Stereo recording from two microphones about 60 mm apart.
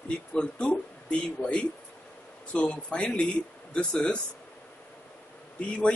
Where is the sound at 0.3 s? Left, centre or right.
Centre.